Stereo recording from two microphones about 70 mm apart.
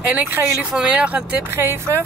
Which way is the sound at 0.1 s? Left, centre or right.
Right.